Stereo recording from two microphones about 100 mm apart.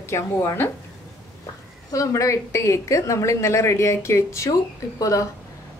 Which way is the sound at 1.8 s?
30° left (ahead or behind).